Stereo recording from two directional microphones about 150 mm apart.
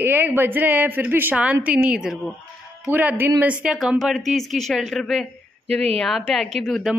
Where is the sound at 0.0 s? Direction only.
15° right (ahead or behind).